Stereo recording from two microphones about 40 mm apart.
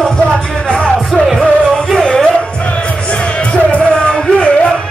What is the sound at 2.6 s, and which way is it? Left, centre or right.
Music, left.